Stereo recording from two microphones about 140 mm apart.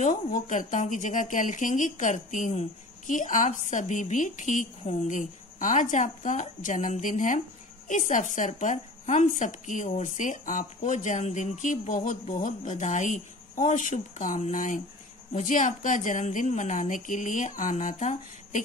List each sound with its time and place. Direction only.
0.0 s speech: 60° left (ahead or behind)